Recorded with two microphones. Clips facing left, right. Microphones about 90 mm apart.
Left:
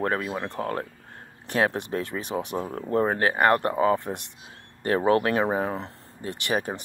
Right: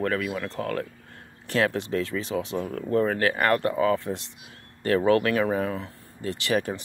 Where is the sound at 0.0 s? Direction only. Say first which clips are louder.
Even; 30° left (ahead or behind).